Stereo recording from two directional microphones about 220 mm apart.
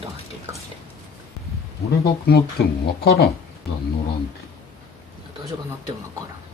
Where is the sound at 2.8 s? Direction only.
45° left (ahead or behind).